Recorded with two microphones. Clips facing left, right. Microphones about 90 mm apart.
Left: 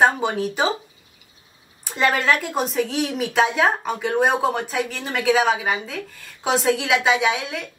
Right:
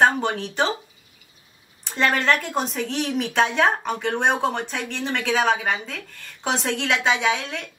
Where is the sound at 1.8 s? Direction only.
5° left (ahead or behind).